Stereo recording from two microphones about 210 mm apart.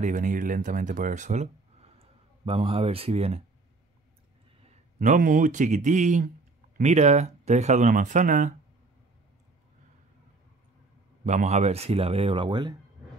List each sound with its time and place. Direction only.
0.0 s speech: 40° right (ahead or behind)
4.6 s speech: 35° right (ahead or behind)
11.2 s speech: 35° right (ahead or behind)